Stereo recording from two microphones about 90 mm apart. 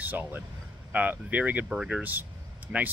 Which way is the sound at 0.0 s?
20° right (ahead or behind).